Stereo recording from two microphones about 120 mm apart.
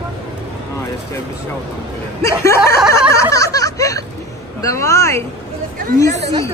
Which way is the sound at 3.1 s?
25° left (ahead or behind).